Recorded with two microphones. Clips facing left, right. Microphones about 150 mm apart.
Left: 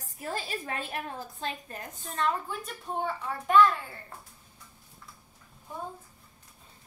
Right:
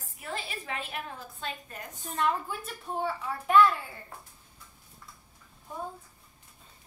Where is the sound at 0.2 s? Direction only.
40° left (ahead or behind).